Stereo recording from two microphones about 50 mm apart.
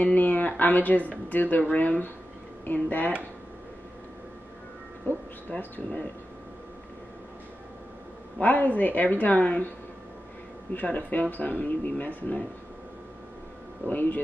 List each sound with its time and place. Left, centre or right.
0.0 s speech: left
5.1 s speech: left
8.4 s speech: left
10.7 s speech: left
13.8 s speech: left